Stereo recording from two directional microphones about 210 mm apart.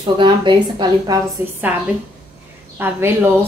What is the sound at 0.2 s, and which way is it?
Speech, 25° right (ahead or behind).